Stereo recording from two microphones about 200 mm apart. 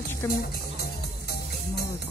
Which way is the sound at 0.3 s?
50° left (ahead or behind).